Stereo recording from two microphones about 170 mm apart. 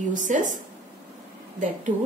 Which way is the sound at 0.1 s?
50° right (ahead or behind).